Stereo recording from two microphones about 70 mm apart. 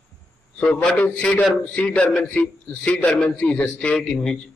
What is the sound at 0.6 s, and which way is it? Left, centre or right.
A man's voice, centre.